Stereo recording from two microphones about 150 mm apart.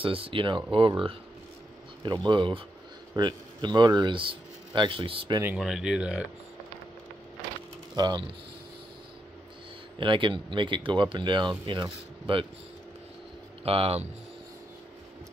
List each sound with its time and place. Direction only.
0.0 s speech: 35° right (ahead or behind)
2.2 s speech: 35° right (ahead or behind)
5.6 s speech: centre (ahead or behind)
7.9 s speech: 30° right (ahead or behind)
9.9 s speech: 35° right (ahead or behind)
13.7 s speech: 40° right (ahead or behind)